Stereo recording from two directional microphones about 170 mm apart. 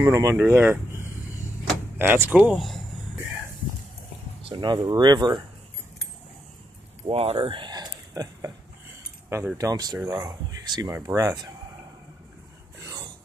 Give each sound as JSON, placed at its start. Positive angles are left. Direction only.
{"t": 0.0, "sound": "speech", "side_deg": -15}
{"t": 4.5, "sound": "speech", "side_deg": -25}
{"t": 7.1, "sound": "a sound", "side_deg": -35}
{"t": 9.3, "sound": "speech", "side_deg": -15}